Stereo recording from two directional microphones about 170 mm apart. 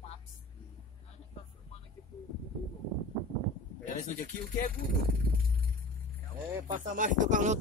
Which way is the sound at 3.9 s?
50° left (ahead or behind).